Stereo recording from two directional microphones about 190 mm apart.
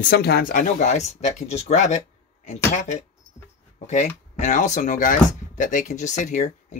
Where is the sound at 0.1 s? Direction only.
55° left (ahead or behind).